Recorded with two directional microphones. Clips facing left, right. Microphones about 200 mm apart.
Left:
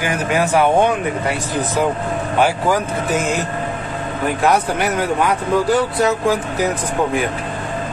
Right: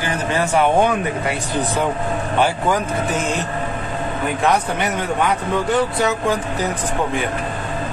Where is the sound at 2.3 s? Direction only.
10° left (ahead or behind).